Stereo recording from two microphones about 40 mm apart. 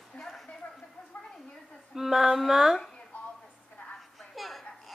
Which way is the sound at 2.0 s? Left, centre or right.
Centre.